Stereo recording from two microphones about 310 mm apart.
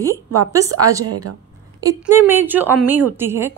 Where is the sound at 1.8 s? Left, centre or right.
Centre.